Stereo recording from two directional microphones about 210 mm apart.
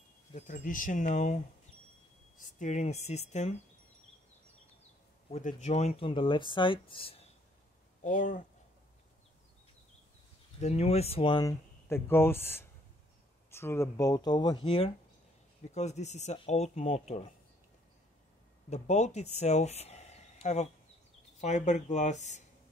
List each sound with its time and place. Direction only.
0.3 s speech: 40° left (ahead or behind)
5.3 s speech: 35° left (ahead or behind)
8.0 s speech: 40° left (ahead or behind)
10.6 s speech: 30° left (ahead or behind)
15.7 s speech: 30° left (ahead or behind)
18.7 s speech: 30° left (ahead or behind)